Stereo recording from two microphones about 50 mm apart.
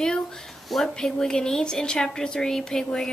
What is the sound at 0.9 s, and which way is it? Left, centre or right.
A woman's voice, centre.